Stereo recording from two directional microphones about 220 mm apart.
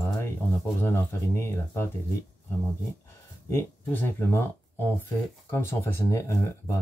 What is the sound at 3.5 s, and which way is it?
Speech, 10° left (ahead or behind).